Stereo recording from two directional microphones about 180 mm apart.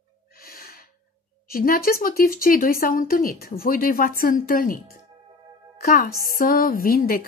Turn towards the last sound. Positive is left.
turn(degrees=55)  # may be behind; listen again after turning